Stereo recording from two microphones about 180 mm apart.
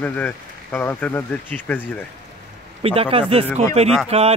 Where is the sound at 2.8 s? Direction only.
30° right (ahead or behind).